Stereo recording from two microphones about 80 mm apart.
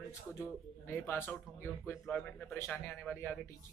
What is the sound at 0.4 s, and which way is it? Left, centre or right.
A man's voice, left.